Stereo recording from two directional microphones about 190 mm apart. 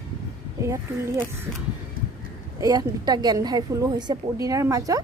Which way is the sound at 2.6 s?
20° right (ahead or behind).